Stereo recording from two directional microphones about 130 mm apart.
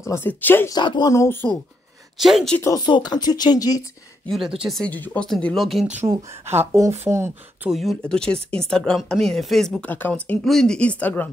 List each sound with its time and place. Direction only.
0.0 s speech: 20° left (ahead or behind)
0.7 s speech: 35° left (ahead or behind)
2.1 s speech: centre (ahead or behind)
2.6 s speech: 30° left (ahead or behind)
4.3 s speech: 5° right (ahead or behind)
6.0 s speech: 20° right (ahead or behind)
7.7 s speech: centre (ahead or behind)
9.8 s speech: 15° left (ahead or behind)